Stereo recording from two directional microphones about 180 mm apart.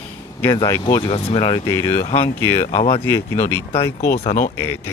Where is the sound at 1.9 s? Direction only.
30° left (ahead or behind).